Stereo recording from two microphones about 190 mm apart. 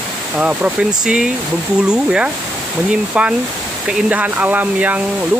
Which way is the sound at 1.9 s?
5° right (ahead or behind).